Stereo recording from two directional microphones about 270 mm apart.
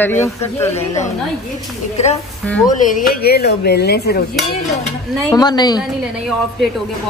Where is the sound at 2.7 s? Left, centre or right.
Left.